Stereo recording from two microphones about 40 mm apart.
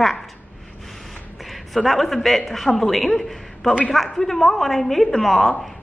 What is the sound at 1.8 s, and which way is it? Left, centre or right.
A woman's voice, centre.